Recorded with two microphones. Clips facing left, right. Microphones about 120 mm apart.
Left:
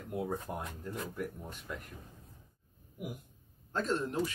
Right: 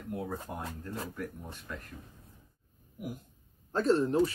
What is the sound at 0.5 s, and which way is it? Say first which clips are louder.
Speech: even; 15° right (ahead or behind).